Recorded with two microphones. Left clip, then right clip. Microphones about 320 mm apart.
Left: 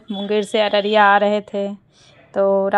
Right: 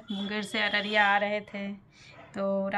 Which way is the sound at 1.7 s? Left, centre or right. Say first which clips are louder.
Left 11 dB; centre.